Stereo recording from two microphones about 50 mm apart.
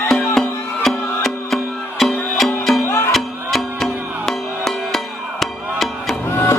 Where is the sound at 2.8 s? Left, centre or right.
Left.